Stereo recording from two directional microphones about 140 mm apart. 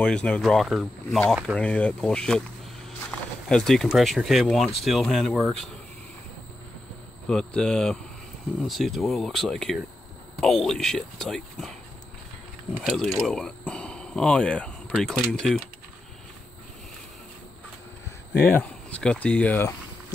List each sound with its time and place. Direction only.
0.0 s speech: 5° left (ahead or behind)
7.2 s speech: 5° left (ahead or behind)
12.8 s speech: centre (ahead or behind)
18.5 s speech: 10° left (ahead or behind)